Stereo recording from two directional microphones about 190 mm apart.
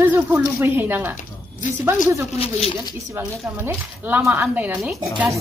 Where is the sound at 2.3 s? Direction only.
30° left (ahead or behind).